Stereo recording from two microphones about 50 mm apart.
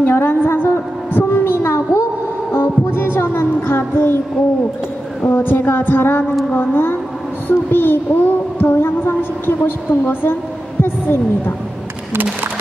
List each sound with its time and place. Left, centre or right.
0.0 s a sound: left
1.1 s heart sounds: left
2.5 s child singing: left
5.2 s a child's voice: left